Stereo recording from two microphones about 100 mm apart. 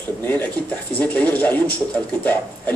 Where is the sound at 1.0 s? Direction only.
15° left (ahead or behind).